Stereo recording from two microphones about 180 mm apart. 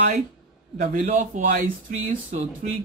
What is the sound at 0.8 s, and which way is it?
Speech, 45° right (ahead or behind).